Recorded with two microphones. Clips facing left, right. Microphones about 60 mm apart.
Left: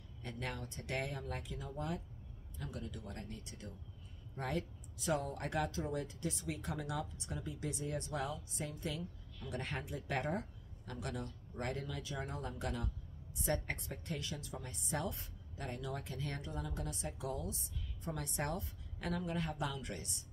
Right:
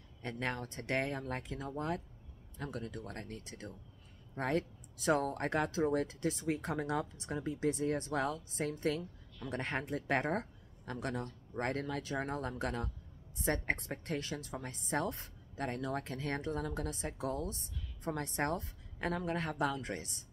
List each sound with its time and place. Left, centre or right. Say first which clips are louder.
0.2 s speech: right 5 dB; right